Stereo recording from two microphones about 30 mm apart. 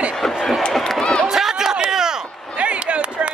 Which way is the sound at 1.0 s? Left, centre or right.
Left.